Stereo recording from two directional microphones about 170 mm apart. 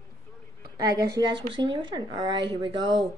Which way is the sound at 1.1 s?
25° right (ahead or behind).